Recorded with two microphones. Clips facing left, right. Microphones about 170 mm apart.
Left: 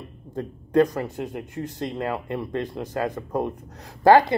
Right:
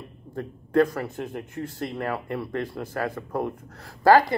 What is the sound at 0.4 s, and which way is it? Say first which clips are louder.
Speech: left 2 dB; 20° left (ahead or behind).